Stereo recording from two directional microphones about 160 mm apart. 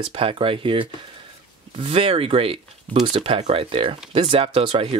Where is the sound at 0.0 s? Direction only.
35° right (ahead or behind).